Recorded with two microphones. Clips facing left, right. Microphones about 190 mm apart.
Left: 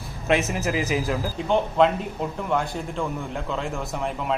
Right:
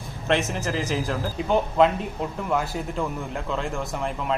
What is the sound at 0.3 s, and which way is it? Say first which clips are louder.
A man's voice: left 2 dB; 5° left (ahead or behind).